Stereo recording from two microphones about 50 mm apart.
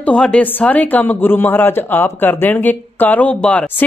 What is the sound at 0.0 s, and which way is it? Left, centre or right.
Speech, left.